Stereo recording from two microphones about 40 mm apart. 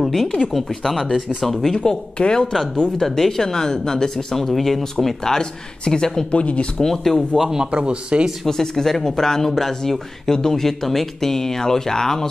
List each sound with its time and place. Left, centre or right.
0.0 s speech: centre
1.8 s speech: left
2.5 s speech: centre
5.2 s speech: centre
6.3 s speech: left
6.8 s speech: centre
7.3 s a man's voice: centre
7.7 s speech: right
8.5 s speech: centre